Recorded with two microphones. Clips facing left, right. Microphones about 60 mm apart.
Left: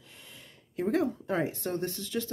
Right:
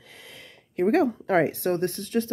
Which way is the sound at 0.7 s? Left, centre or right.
Right.